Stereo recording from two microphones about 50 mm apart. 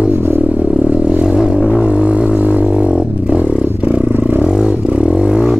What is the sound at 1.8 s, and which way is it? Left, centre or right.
Didgeridoo, centre.